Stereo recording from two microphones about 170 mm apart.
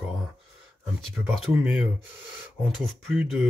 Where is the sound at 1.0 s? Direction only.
Centre (ahead or behind).